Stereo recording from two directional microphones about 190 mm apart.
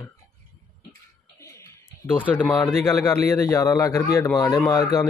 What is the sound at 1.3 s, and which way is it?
Music, 15° left (ahead or behind).